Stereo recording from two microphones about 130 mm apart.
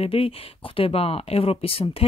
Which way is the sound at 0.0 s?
45° left (ahead or behind).